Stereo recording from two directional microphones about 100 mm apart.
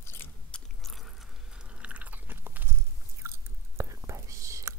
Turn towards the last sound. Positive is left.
turn(degrees=-30)  # may be behind; listen again after turning